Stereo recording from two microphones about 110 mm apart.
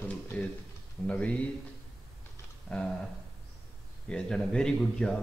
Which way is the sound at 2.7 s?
5° left (ahead or behind).